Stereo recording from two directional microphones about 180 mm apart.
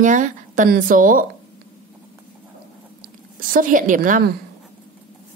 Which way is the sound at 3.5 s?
50° right (ahead or behind).